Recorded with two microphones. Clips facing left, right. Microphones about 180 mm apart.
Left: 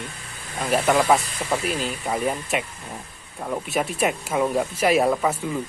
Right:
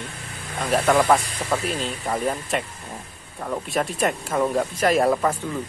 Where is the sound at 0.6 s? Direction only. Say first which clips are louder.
Right 1 dB; centre (ahead or behind).